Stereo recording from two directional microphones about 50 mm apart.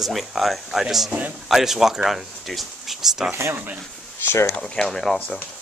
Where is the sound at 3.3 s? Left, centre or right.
Right.